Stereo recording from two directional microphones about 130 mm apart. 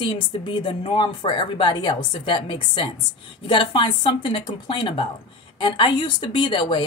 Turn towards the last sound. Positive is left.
turn(degrees=40)  # may be behind; listen again after turning